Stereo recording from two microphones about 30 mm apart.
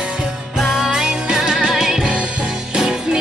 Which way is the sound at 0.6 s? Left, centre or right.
Centre.